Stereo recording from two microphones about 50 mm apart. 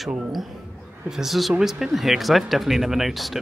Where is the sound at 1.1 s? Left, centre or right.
Centre.